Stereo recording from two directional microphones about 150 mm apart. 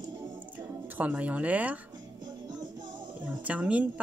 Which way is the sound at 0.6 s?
10° right (ahead or behind).